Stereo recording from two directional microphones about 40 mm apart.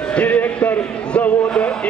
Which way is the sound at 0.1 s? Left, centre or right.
Left.